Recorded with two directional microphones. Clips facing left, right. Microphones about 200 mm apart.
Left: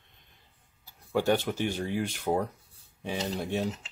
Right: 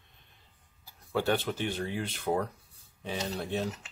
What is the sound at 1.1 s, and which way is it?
Speech, 15° left (ahead or behind).